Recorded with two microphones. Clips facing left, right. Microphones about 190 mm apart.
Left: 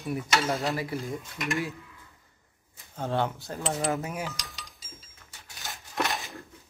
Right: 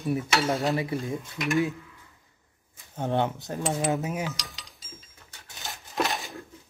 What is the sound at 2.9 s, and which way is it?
Speech, 20° right (ahead or behind).